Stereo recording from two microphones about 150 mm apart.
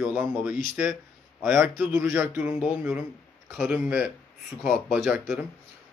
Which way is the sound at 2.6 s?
5° right (ahead or behind).